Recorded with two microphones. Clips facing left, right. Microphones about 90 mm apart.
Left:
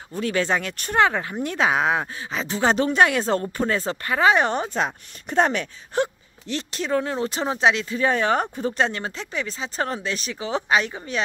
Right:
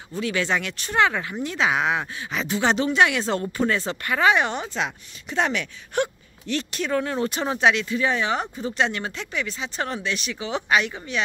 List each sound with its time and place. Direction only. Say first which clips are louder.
0.1 s speech: left 2 dB; 40° left (ahead or behind)
5.9 s speech: left 1 dB; 25° left (ahead or behind)